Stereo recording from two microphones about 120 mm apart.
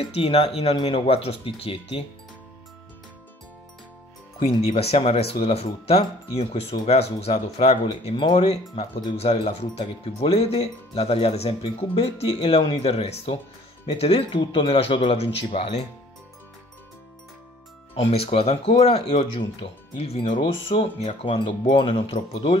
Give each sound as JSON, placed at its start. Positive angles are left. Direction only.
{"t": 0.0, "sound": "speech", "side_deg": 60}
{"t": 4.4, "sound": "speech", "side_deg": 60}
{"t": 8.1, "sound": "speech", "side_deg": 45}
{"t": 17.9, "sound": "speech", "side_deg": 55}